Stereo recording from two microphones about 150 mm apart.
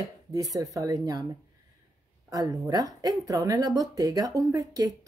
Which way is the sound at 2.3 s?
25° right (ahead or behind).